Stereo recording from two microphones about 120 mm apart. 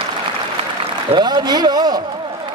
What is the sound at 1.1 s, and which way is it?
Speech, 35° right (ahead or behind).